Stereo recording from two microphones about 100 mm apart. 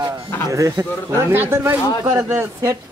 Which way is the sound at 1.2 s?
20° right (ahead or behind).